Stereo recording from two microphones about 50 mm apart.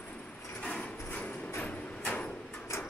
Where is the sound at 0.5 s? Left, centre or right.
Left.